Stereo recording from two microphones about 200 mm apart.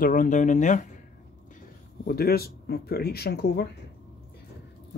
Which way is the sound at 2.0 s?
50° left (ahead or behind).